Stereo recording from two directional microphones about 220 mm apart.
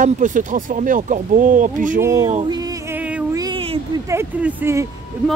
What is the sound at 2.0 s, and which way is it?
Speech, 15° right (ahead or behind).